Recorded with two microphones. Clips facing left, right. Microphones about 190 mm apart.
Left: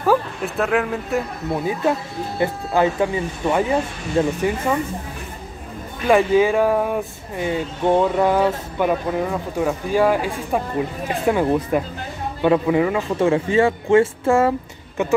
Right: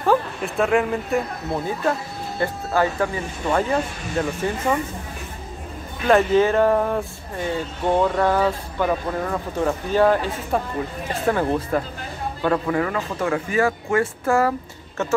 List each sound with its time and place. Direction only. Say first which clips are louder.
0.0 s speech: left 1 dB; 5° left (ahead or behind)
1.7 s speech: left 4 dB; 15° left (ahead or behind)
6.0 s speech: left 1 dB; 10° left (ahead or behind)
13.2 s speech: left 4 dB; 25° left (ahead or behind)
15.0 s speech: left 4 dB; 15° left (ahead or behind)